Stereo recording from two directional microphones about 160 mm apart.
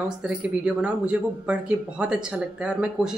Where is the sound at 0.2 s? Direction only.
5° right (ahead or behind).